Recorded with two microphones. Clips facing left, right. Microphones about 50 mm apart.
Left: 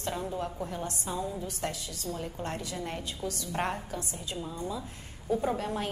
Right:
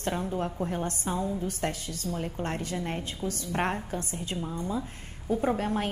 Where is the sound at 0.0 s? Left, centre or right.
Right.